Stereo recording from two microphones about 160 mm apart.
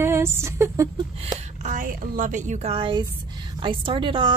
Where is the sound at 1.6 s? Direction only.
50° right (ahead or behind).